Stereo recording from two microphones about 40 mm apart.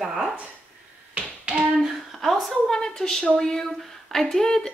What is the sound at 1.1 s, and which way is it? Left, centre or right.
Finger snapping, right.